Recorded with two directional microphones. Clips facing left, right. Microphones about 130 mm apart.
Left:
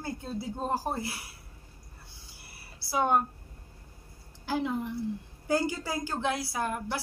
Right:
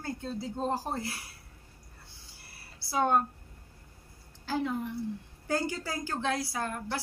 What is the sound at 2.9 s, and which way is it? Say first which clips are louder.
Speech: even; 10° left (ahead or behind).